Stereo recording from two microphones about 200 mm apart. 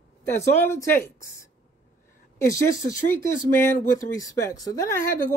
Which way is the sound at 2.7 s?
15° left (ahead or behind).